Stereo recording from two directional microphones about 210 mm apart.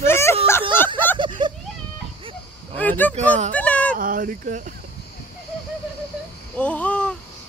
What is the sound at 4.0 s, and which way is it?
Speech, 40° right (ahead or behind).